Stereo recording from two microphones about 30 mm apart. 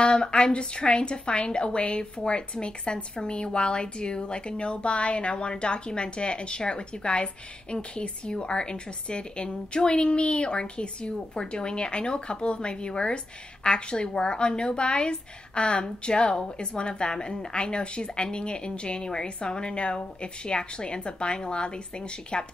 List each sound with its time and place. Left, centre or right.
0.0 s a woman's voice: left